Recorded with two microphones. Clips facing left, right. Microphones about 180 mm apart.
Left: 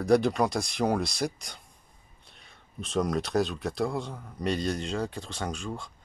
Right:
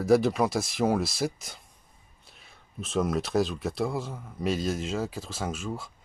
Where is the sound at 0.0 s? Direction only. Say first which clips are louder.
Right 1 dB; 5° right (ahead or behind).